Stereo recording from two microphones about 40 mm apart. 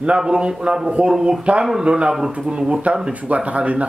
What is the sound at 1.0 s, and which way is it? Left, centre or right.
Speech, right.